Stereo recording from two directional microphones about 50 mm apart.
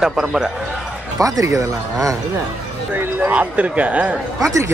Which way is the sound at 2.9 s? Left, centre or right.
Right.